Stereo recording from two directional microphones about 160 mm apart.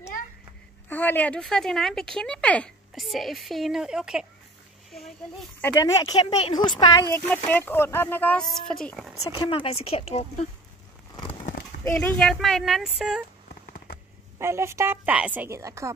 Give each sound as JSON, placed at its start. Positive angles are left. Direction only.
{"t": 0.8, "sound": "speech", "side_deg": 10}
{"t": 5.6, "sound": "speech", "side_deg": 15}
{"t": 9.5, "sound": "speech", "side_deg": 35}
{"t": 11.8, "sound": "speech", "side_deg": 10}
{"t": 14.4, "sound": "a woman's voice", "side_deg": -15}